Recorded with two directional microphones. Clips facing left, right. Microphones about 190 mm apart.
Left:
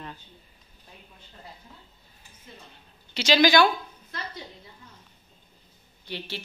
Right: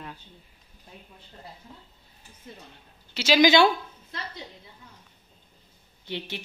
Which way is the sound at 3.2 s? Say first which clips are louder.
Right 1 dB; 5° right (ahead or behind).